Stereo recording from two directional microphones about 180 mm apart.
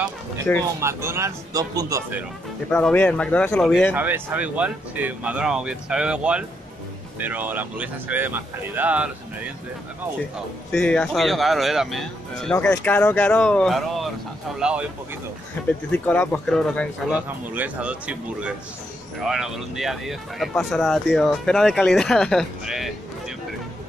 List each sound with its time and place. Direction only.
0.7 s speech: 15° right (ahead or behind)
2.7 s speech: 5° left (ahead or behind)
3.9 s speech: 10° right (ahead or behind)
10.7 s speech: 5° left (ahead or behind)
15.6 s a sound: 10° left (ahead or behind)
15.9 s speech: 10° left (ahead or behind)
17.1 s speech: 5° right (ahead or behind)